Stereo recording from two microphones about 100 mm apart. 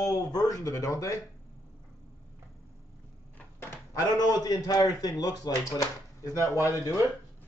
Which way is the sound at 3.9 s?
40° left (ahead or behind).